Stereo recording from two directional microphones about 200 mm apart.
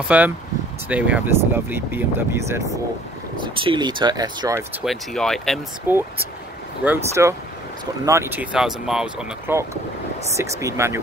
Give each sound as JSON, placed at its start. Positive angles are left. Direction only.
{"t": 0.1, "sound": "speech", "side_deg": -5}
{"t": 3.4, "sound": "speech", "side_deg": -25}
{"t": 4.8, "sound": "speech", "side_deg": 0}
{"t": 5.9, "sound": "speech", "side_deg": -10}